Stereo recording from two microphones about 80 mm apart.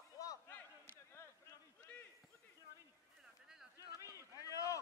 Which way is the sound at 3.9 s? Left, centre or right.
Left.